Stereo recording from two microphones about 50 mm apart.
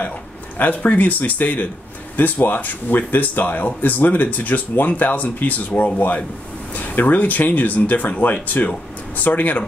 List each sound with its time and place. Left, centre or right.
0.6 s speech: left